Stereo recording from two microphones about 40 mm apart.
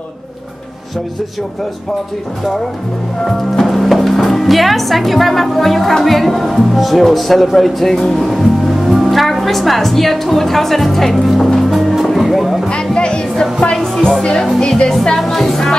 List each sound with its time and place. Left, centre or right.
3.5 s a woman's voice: centre
11.9 s music: centre
12.6 s music: left
14.6 s speech: centre
15.1 s music: centre